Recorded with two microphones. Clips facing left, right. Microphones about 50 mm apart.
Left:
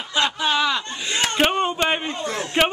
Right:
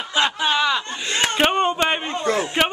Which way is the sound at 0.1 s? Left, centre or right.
Centre.